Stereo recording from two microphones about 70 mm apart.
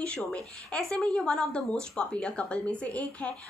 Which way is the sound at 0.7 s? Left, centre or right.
Centre.